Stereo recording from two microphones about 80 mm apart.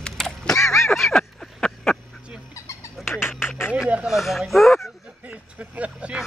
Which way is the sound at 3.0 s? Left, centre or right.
Left.